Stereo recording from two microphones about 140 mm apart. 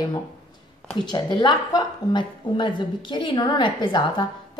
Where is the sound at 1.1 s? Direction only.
30° left (ahead or behind).